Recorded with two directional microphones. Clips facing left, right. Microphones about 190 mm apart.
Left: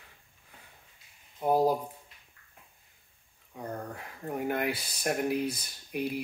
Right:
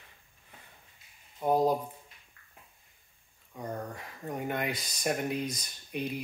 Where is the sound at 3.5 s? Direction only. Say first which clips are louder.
Even; 5° left (ahead or behind).